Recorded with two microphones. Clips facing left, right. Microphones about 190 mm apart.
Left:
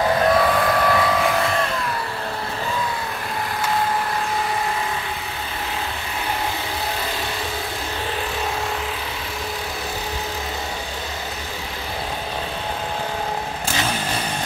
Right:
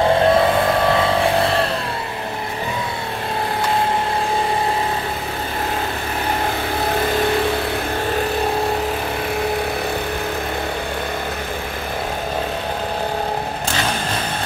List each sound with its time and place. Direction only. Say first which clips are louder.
0.0 s vehicle: right 3 dB; 25° right (ahead or behind)